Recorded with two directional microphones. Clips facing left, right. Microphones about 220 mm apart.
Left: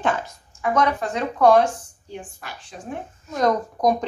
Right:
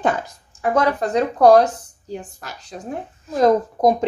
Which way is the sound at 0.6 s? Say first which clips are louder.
Right 3 dB; 35° right (ahead or behind).